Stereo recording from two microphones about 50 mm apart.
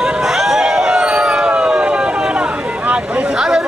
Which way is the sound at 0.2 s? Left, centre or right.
Centre.